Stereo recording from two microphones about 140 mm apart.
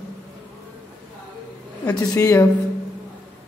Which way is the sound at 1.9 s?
30° left (ahead or behind).